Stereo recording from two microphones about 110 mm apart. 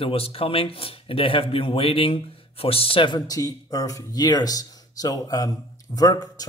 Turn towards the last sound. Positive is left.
turn(degrees=35)  # may be behind; listen again after turning